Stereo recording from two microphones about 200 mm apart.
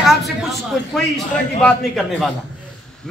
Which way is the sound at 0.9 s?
Centre (ahead or behind).